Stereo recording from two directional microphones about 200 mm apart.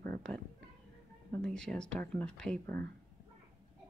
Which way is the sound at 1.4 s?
5° left (ahead or behind).